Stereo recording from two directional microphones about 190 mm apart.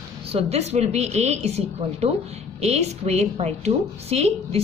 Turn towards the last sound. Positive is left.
turn(degrees=-35)  # may be behind; listen again after turning